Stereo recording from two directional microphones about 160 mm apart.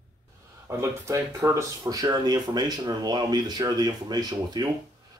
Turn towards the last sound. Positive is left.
turn(degrees=-25)  # may be behind; listen again after turning